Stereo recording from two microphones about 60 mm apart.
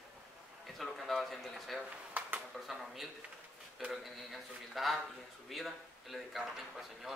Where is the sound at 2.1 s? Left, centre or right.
Right.